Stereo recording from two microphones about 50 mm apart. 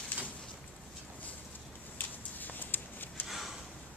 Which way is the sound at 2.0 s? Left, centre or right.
Left.